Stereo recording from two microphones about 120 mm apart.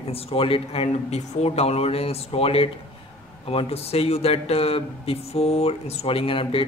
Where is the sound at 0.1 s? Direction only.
55° left (ahead or behind).